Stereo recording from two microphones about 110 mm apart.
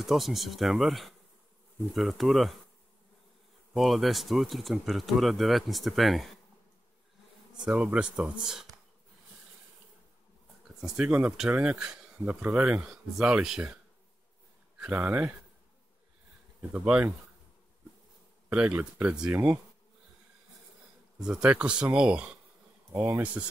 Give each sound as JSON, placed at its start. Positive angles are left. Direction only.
{"t": 0.0, "sound": "speech", "side_deg": 0}
{"t": 3.7, "sound": "speech", "side_deg": 0}
{"t": 7.6, "sound": "speech", "side_deg": -10}
{"t": 10.8, "sound": "speech", "side_deg": -5}
{"t": 15.0, "sound": "speech", "side_deg": -20}
{"t": 16.7, "sound": "speech", "side_deg": -10}
{"t": 18.5, "sound": "speech", "side_deg": -10}
{"t": 21.2, "sound": "speech", "side_deg": -10}
{"t": 22.9, "sound": "speech", "side_deg": -20}